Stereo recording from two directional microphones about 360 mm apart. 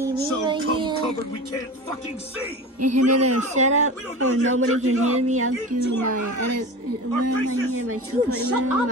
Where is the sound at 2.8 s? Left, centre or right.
Right.